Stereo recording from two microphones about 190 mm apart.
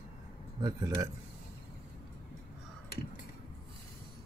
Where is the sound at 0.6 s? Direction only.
20° right (ahead or behind).